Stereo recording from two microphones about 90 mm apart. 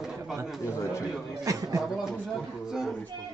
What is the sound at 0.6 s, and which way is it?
Speech, 35° left (ahead or behind).